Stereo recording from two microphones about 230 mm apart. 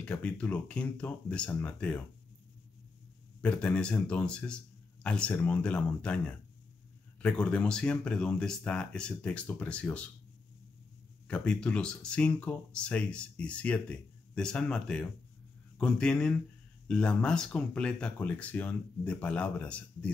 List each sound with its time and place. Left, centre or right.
0.0 s speech: centre
3.3 s speech: centre
11.2 s speech: centre